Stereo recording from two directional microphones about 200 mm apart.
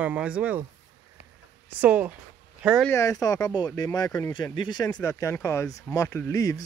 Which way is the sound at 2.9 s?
15° left (ahead or behind).